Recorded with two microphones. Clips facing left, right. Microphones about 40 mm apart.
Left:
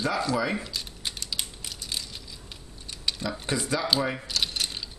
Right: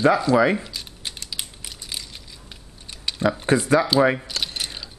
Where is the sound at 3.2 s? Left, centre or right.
Right.